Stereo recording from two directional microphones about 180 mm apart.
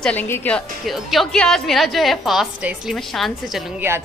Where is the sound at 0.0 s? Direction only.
10° left (ahead or behind).